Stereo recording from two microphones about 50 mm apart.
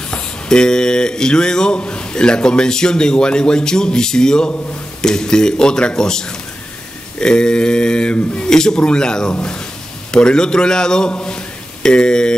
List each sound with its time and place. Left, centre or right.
0.1 s a man's voice: centre